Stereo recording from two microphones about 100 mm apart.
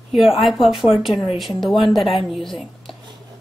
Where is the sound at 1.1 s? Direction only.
60° left (ahead or behind).